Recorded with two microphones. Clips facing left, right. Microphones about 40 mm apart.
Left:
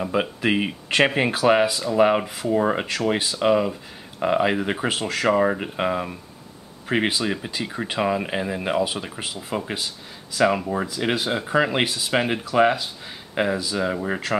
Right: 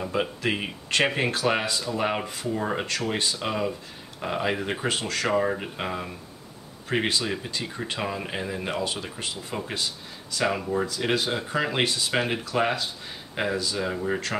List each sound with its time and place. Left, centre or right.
0.0 s speech: centre